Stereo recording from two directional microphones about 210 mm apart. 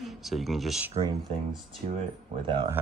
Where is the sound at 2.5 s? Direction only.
25° right (ahead or behind).